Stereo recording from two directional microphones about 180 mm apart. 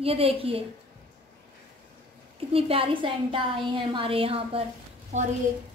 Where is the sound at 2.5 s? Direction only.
30° right (ahead or behind).